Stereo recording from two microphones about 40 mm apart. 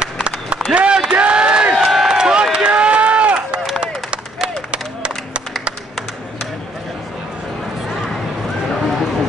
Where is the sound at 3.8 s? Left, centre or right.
Right.